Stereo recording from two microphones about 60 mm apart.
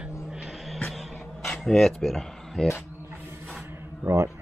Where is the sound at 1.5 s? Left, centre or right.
Centre.